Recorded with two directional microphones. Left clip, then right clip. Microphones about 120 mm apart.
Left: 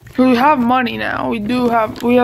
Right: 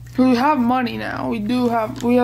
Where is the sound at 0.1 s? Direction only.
20° right (ahead or behind).